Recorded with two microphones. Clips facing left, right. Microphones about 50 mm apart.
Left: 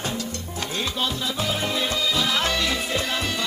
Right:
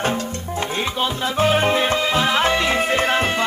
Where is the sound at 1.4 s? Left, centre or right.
Right.